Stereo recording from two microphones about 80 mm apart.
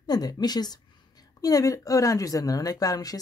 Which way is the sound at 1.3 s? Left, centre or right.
Left.